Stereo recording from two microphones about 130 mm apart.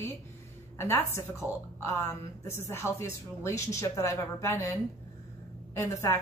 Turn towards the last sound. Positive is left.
turn(degrees=25)  # may be behind; listen again after turning